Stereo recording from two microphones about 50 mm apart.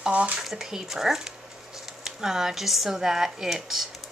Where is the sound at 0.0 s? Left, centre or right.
Right.